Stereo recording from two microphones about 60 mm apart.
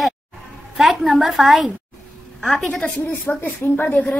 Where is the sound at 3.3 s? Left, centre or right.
Left.